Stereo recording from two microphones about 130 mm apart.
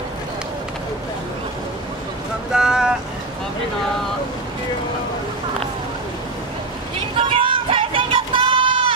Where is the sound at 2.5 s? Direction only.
5° right (ahead or behind).